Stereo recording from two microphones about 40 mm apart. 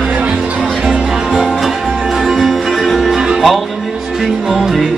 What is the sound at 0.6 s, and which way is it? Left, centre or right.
Music, centre.